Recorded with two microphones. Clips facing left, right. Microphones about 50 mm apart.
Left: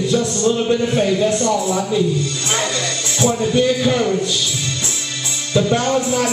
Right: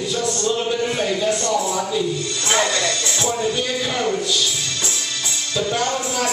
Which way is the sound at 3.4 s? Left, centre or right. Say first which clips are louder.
Left 6 dB; centre.